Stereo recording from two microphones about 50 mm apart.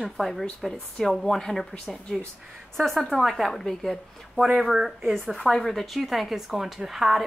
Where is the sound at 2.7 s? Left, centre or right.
Centre.